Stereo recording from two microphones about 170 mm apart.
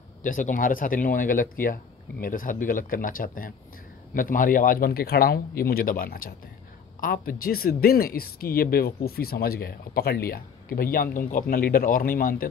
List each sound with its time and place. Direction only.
0.2 s speech: 50° left (ahead or behind)